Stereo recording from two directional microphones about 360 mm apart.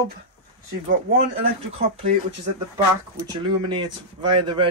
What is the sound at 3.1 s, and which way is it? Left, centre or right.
Speech, centre.